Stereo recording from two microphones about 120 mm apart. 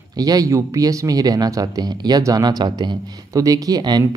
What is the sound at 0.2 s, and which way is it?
Speech, 30° right (ahead or behind).